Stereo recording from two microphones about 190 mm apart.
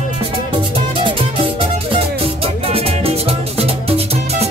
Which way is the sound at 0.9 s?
25° right (ahead or behind).